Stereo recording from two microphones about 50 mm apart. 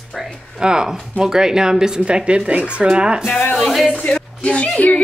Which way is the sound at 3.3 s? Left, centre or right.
Left.